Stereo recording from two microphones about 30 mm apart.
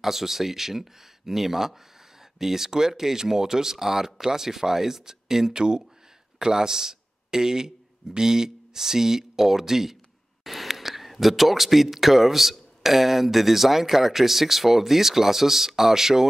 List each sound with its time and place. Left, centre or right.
0.0 s speech: centre